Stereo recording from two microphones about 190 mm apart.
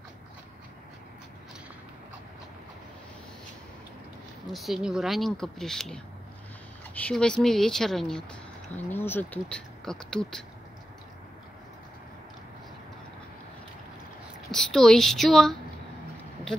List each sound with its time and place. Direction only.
4.5 s speech: centre (ahead or behind)
7.0 s speech: 5° left (ahead or behind)
14.5 s speech: 5° left (ahead or behind)